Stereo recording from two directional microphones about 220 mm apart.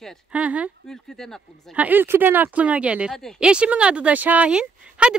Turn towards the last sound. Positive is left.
turn(degrees=-5)  # may be behind; listen again after turning